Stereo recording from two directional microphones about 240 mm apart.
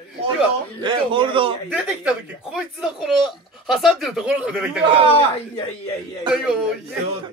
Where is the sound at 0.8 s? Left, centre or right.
Right.